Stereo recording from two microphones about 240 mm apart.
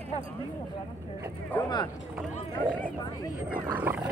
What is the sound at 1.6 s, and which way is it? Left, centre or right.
Speech, centre.